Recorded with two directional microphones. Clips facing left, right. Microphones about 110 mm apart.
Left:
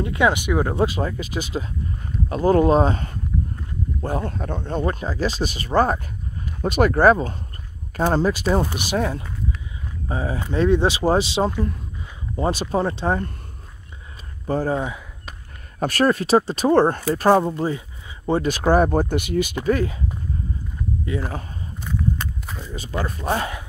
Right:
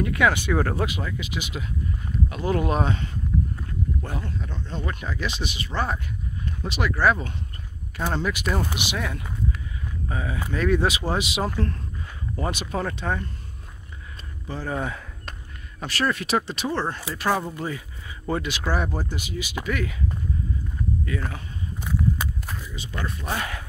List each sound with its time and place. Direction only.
0.0 s speech: 25° left (ahead or behind)
0.7 s speech: 35° left (ahead or behind); by 4.8 s 55° left (ahead or behind)
4.8 s speech: 35° left (ahead or behind)
14.8 s speech: 15° left (ahead or behind)
15.8 s speech: 45° left (ahead or behind)
17.5 s a sound: 25° left (ahead or behind)
18.4 s speech: 45° left (ahead or behind)
19.6 s speech: 35° left (ahead or behind)
21.0 s speech: 25° left (ahead or behind)
22.6 s speech: 35° left (ahead or behind)
23.2 s speech: 25° left (ahead or behind)